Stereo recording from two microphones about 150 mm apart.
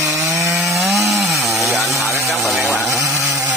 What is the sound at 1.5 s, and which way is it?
Chainsaw, centre (ahead or behind).